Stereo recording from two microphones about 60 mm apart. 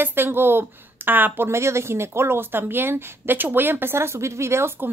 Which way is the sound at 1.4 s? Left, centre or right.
Right.